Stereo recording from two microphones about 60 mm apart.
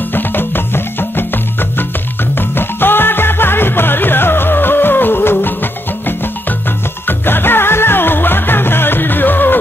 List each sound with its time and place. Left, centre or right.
0.1 s music: left